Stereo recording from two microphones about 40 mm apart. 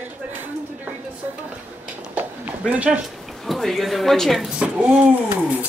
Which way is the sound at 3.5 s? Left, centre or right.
Centre.